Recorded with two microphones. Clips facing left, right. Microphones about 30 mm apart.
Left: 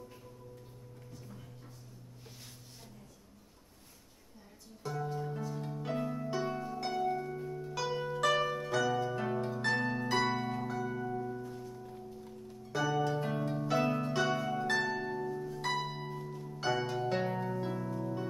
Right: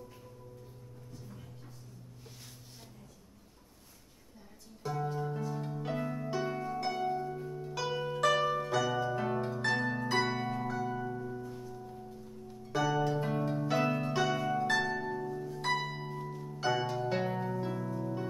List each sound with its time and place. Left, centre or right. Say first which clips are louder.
4.8 s music: right 2 dB; centre
6.4 s harp: right 2 dB; centre
10.8 s music: even; centre
12.7 s harp: right 1 dB; centre
14.2 s harp: right 2 dB; centre
15.9 s music: right 1 dB; centre